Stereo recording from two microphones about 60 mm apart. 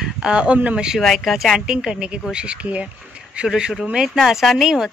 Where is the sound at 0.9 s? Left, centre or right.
Centre.